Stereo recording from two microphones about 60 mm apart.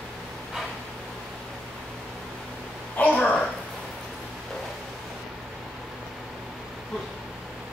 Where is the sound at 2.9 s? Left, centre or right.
Left.